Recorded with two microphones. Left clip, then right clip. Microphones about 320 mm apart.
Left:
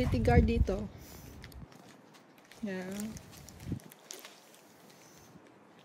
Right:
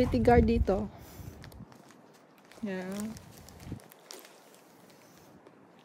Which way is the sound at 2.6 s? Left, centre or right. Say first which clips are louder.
Right 2 dB; centre.